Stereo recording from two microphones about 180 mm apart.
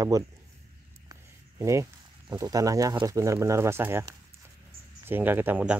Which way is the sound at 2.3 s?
20° right (ahead or behind).